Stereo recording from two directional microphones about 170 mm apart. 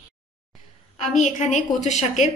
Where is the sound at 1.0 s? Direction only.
45° left (ahead or behind).